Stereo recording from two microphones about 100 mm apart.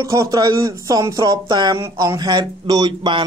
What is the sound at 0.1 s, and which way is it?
Speech, 35° right (ahead or behind).